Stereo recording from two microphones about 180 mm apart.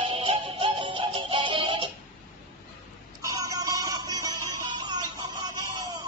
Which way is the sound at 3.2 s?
20° right (ahead or behind).